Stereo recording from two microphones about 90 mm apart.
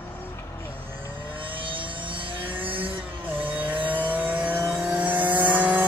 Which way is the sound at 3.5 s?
20° right (ahead or behind).